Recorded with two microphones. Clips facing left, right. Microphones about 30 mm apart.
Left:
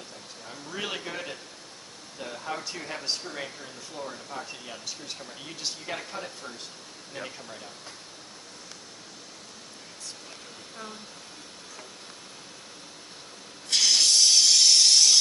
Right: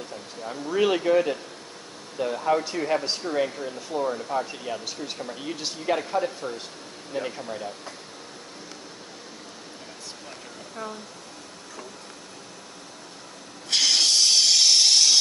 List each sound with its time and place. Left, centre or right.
0.4 s speech: right
0.7 s speech: centre
4.5 s speech: centre
7.4 s speech: right
13.7 s hiss: centre